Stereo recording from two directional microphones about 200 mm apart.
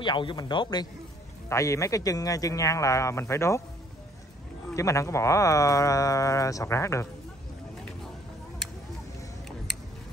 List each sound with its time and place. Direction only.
0.0 s a man's voice: 25° left (ahead or behind)
4.7 s speech: 15° left (ahead or behind)